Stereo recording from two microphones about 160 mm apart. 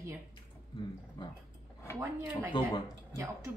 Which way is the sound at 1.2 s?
30° left (ahead or behind).